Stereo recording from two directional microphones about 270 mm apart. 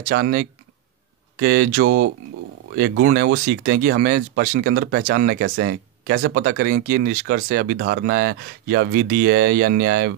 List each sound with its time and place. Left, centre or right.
0.0 s speech: right